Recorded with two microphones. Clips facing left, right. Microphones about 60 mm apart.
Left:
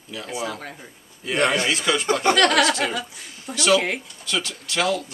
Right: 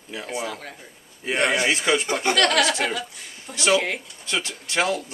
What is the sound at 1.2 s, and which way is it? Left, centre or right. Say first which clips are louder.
Speech: even; centre.